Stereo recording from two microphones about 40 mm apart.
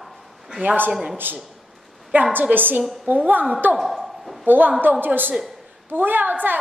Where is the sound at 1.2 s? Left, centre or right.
Right.